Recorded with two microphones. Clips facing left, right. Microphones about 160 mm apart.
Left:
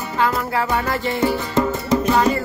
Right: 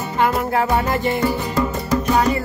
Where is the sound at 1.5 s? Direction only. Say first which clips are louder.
Left 2 dB; 25° left (ahead or behind).